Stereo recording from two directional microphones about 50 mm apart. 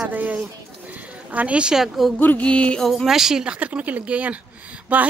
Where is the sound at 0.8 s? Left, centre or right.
Right.